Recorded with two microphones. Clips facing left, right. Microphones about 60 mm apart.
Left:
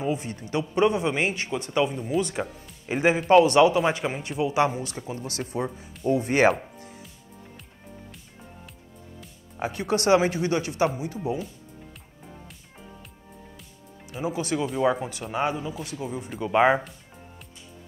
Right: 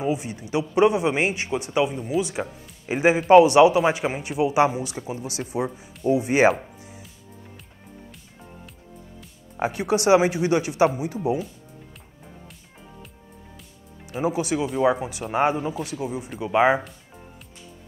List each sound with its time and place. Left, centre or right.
0.0 s speech: centre
9.6 s speech: centre
14.2 s speech: centre
15.3 s speech: right; by 16.9 s centre